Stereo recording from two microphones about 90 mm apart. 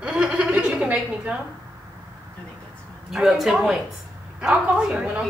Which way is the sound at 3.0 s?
5° right (ahead or behind).